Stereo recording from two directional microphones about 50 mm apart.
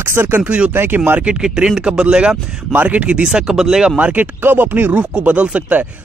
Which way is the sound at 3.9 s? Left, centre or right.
Right.